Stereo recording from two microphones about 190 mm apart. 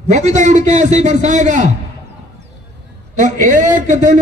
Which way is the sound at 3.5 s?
40° right (ahead or behind).